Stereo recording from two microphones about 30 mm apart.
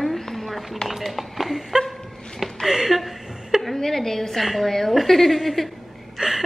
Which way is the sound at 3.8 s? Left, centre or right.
Centre.